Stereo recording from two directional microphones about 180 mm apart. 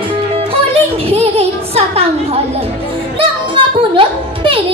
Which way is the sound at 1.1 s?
35° right (ahead or behind).